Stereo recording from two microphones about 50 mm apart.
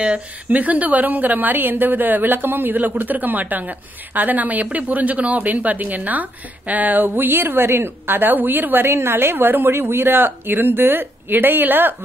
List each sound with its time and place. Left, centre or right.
0.0 s speech: right
0.6 s a woman's voice: right